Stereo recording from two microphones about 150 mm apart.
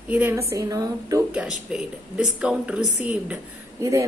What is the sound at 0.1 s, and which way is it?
A woman's voice, 15° right (ahead or behind).